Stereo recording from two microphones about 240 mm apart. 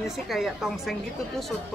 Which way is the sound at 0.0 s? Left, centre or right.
Centre.